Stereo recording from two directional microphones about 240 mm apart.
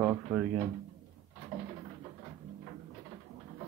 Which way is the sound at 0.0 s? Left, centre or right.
Centre.